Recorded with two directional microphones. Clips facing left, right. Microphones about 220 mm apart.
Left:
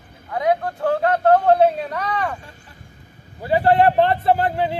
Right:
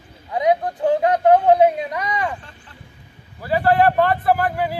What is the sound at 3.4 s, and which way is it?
Speech, 20° left (ahead or behind).